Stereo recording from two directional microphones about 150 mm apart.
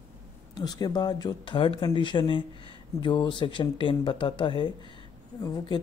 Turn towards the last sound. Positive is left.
turn(degrees=25)  # may be behind; listen again after turning